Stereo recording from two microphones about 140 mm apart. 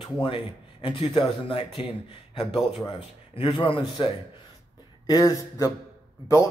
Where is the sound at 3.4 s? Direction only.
40° left (ahead or behind); by 5.7 s 25° left (ahead or behind).